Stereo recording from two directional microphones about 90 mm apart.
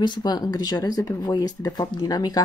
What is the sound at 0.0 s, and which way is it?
Speech, 55° left (ahead or behind).